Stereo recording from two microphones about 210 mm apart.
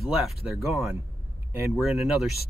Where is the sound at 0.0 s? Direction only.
Centre (ahead or behind).